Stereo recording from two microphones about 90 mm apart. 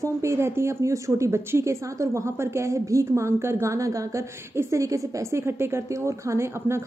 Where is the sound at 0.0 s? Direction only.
30° right (ahead or behind).